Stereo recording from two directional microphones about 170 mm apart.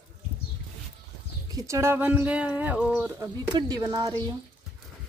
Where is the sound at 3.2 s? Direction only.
20° right (ahead or behind).